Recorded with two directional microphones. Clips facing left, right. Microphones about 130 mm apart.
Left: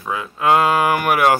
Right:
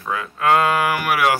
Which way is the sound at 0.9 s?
40° left (ahead or behind).